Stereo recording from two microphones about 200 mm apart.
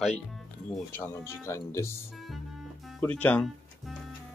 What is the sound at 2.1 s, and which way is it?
Music, centre (ahead or behind).